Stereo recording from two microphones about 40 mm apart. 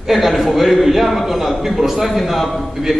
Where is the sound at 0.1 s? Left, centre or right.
Centre.